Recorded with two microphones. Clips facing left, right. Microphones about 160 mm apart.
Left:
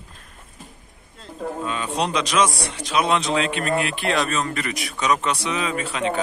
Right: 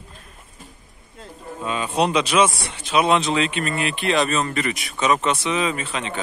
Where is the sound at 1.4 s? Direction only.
90° left.